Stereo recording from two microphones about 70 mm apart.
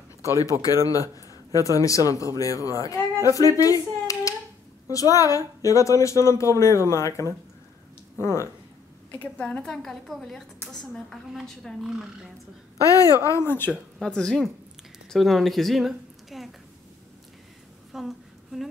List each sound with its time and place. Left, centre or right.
0.4 s a woman's voice: left
9.1 s a woman's voice: left; by 11.9 s centre
12.8 s a woman's voice: left
13.4 s speech: left
13.9 s a woman's voice: centre
17.9 s a sound: centre